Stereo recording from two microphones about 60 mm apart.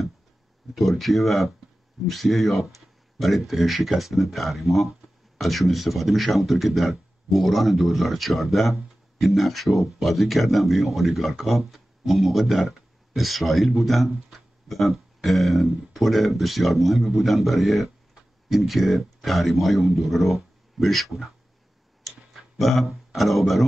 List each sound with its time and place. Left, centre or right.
0.7 s speech: centre
22.6 s speech: centre